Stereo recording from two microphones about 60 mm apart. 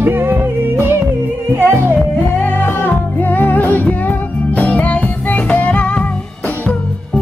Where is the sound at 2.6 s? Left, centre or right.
Left.